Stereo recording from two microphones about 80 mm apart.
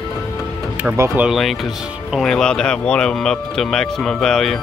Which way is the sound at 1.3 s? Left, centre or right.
Centre.